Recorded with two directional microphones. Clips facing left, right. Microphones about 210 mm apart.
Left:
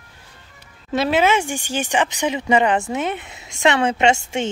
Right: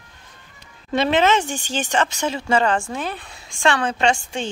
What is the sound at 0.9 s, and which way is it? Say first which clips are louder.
Speech: even; 5° left (ahead or behind).